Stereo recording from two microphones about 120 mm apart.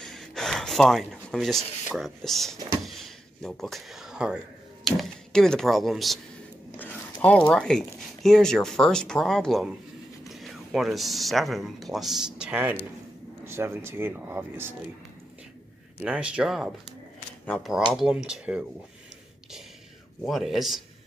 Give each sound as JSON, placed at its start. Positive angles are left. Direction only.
{"t": 0.0, "sound": "gasp", "side_deg": 5}
{"t": 2.0, "sound": "speech", "side_deg": 0}
{"t": 2.8, "sound": "a sound", "side_deg": 0}
{"t": 4.8, "sound": "speech", "side_deg": 0}
{"t": 6.8, "sound": "speech", "side_deg": 15}
{"t": 16.0, "sound": "speech", "side_deg": -10}
{"t": 20.2, "sound": "speech", "side_deg": 0}